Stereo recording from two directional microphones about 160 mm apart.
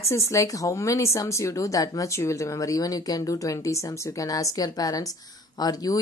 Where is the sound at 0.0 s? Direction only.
15° left (ahead or behind).